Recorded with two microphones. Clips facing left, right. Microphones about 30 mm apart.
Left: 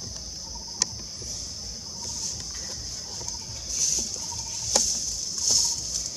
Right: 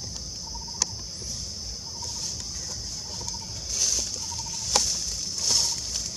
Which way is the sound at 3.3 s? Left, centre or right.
Right.